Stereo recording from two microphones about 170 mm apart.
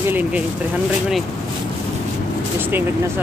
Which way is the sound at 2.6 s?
10° right (ahead or behind).